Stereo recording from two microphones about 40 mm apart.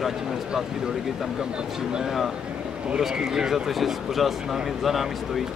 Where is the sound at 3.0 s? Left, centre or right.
Centre.